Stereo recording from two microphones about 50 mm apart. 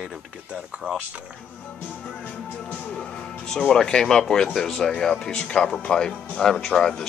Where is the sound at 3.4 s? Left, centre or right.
Centre.